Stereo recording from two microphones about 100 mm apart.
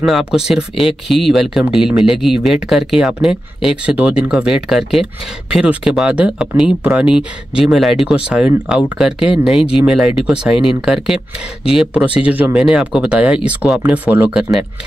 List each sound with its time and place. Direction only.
0.0 s speech: 5° right (ahead or behind)